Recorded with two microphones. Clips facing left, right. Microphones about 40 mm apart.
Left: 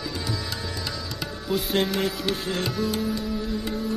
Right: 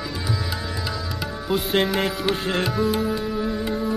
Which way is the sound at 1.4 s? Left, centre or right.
Centre.